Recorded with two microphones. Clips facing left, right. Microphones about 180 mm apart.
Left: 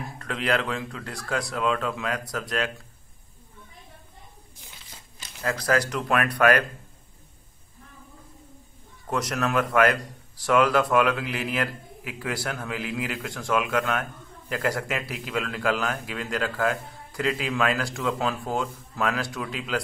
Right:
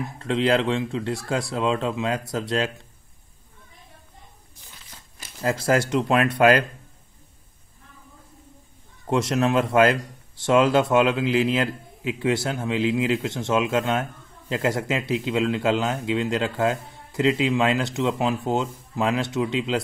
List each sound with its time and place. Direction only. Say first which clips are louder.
0.2 s speech: right 6 dB; 25° right (ahead or behind)
5.4 s speech: right 3 dB; 25° right (ahead or behind)
9.0 s speech: right 5 dB; 25° right (ahead or behind)